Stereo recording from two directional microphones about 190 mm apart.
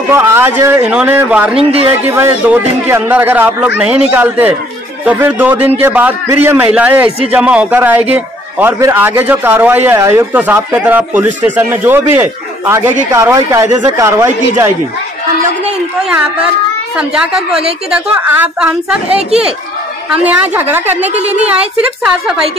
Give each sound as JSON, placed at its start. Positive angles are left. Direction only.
{"t": 0.1, "sound": "a man's voice", "side_deg": -15}
{"t": 1.6, "sound": "speech", "side_deg": -30}
{"t": 1.9, "sound": "a man's voice", "side_deg": -15}
{"t": 16.0, "sound": "a woman's voice", "side_deg": -5}
{"t": 21.1, "sound": "a woman's voice", "side_deg": -35}